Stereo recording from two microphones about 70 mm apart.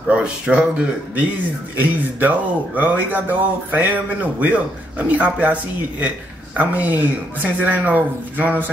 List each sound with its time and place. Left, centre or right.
0.1 s speech: centre
1.8 s speech: right